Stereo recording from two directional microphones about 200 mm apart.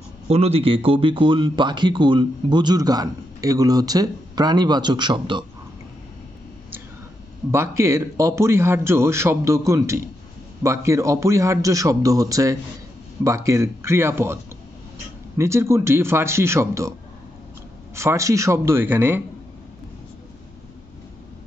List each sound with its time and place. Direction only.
0.3 s speech: 30° right (ahead or behind)
7.5 s a man's voice: 15° right (ahead or behind)
17.9 s a man's voice: 15° right (ahead or behind)